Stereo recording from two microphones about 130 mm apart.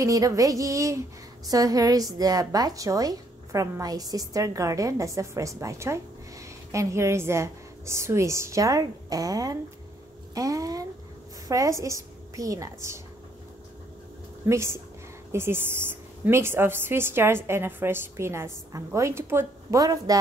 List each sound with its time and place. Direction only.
0.0 s a woman's voice: 25° right (ahead or behind)
14.5 s a woman's voice: 20° right (ahead or behind)